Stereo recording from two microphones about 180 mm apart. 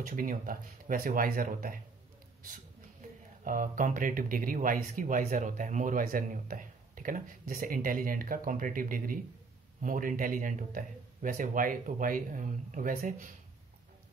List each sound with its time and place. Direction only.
0.0 s speech: 45° right (ahead or behind)
3.4 s speech: 45° right (ahead or behind)